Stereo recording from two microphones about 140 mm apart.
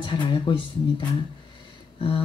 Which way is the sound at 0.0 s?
35° left (ahead or behind).